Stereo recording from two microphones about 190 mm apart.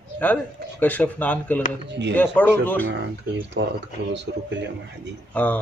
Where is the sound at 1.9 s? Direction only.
65° right (ahead or behind).